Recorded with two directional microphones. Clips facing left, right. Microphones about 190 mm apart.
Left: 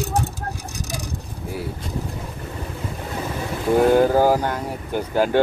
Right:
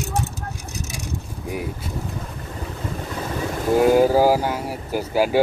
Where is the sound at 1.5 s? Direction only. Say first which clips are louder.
Right 2 dB; 15° right (ahead or behind).